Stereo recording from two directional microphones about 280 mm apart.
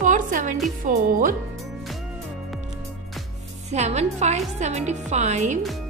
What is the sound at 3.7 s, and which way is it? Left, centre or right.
A woman's voice, right.